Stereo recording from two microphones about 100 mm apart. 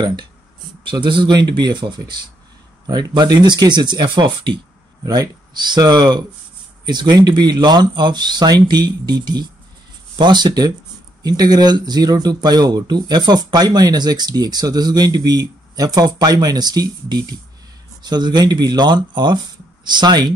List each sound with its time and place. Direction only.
0.0 s speech: 45° right (ahead or behind)
5.0 s speech: 40° right (ahead or behind)